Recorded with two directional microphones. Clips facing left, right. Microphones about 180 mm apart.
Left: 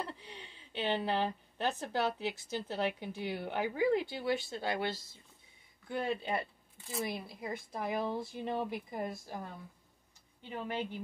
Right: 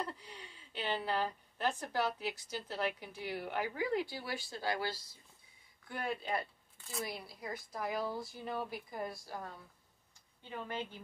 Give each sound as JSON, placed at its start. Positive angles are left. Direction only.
{"t": 0.0, "sound": "a woman's voice", "side_deg": 25}
{"t": 7.4, "sound": "a woman's voice", "side_deg": 25}
{"t": 10.5, "sound": "a woman's voice", "side_deg": 15}